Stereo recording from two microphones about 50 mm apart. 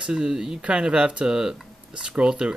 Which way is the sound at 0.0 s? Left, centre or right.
Centre.